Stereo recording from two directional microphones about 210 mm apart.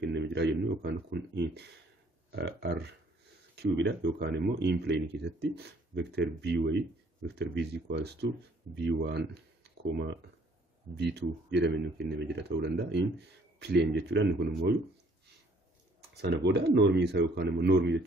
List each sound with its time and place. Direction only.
0.0 s speech: 55° right (ahead or behind)
11.0 s speech: 55° right (ahead or behind)
16.2 s speech: 55° right (ahead or behind)